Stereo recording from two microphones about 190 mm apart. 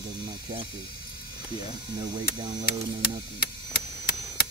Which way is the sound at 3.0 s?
55° left (ahead or behind).